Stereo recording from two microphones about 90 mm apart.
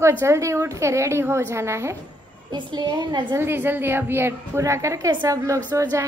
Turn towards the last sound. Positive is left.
turn(degrees=-35)  # may be behind; listen again after turning